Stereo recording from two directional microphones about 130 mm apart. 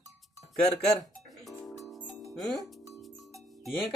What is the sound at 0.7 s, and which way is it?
Music, 5° left (ahead or behind).